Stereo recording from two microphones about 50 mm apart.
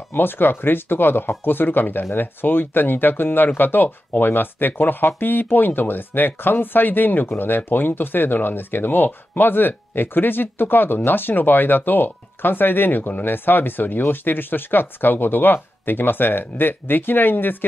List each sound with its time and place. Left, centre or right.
0.1 s speech: left